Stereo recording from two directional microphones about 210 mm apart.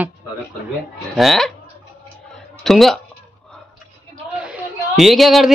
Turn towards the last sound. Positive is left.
turn(degrees=0)  # may be behind; listen again after turning